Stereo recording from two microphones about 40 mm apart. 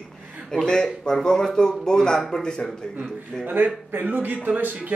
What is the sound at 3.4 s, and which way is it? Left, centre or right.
A man's voice, right.